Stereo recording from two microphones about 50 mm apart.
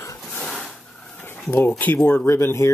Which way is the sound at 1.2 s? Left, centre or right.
Left.